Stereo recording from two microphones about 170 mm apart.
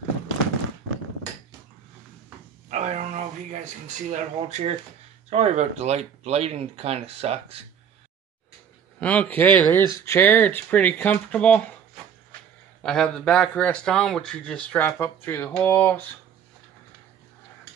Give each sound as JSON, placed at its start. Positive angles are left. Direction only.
{"t": 2.7, "sound": "speech", "side_deg": -45}
{"t": 9.0, "sound": "speech", "side_deg": 10}
{"t": 12.8, "sound": "speech", "side_deg": 5}